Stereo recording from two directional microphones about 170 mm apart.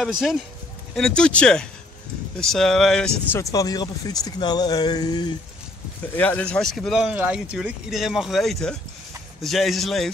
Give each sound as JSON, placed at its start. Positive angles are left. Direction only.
{"t": 0.9, "sound": "speech", "side_deg": 5}
{"t": 3.3, "sound": "speech", "side_deg": 20}
{"t": 6.1, "sound": "speech", "side_deg": 10}